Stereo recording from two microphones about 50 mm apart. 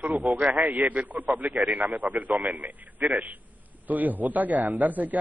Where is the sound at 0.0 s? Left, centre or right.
Right.